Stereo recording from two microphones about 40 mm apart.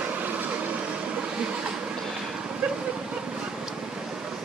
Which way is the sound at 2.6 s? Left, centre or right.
Right.